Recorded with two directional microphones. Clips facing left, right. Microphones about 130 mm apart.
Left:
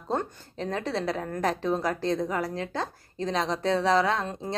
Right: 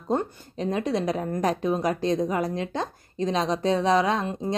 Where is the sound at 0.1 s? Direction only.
15° right (ahead or behind).